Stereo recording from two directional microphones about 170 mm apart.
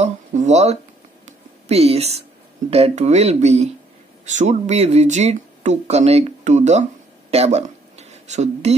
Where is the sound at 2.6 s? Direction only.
35° right (ahead or behind).